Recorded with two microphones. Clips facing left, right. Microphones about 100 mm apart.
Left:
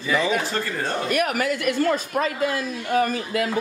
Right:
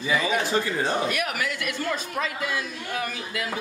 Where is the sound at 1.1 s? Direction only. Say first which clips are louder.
Left 6 dB; 45° left (ahead or behind).